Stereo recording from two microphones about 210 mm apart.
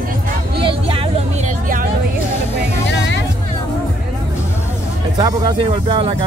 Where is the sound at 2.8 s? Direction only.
55° left (ahead or behind).